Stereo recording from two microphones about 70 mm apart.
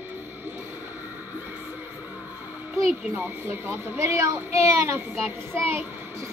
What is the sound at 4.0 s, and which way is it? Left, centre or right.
Speech, right.